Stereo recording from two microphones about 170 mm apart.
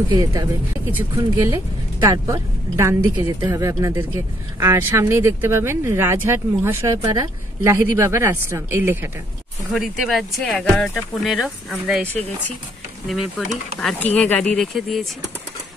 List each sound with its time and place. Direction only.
0.1 s a woman's voice: 20° right (ahead or behind)
9.7 s speech: centre (ahead or behind)
13.7 s speech: 10° left (ahead or behind)